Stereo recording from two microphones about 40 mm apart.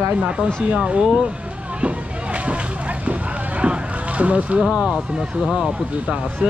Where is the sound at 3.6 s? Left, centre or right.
Right.